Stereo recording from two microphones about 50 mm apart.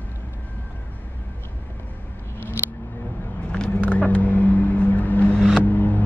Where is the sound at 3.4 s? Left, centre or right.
Centre.